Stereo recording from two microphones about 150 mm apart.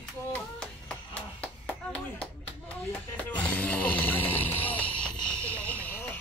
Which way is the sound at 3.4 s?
10° left (ahead or behind).